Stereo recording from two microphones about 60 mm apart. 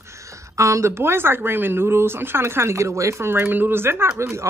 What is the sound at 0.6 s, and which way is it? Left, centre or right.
Speech, right.